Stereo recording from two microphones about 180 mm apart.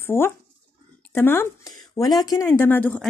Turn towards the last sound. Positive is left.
turn(degrees=10)  # may be behind; listen again after turning